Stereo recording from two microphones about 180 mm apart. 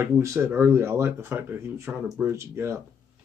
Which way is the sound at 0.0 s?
15° right (ahead or behind).